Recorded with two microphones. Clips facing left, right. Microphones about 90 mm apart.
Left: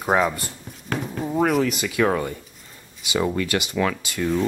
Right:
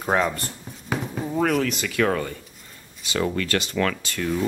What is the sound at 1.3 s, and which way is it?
Speech, 5° left (ahead or behind).